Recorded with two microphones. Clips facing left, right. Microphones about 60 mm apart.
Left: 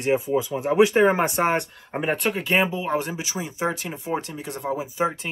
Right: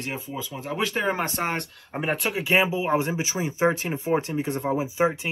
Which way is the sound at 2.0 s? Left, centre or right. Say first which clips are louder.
Left 2 dB; centre.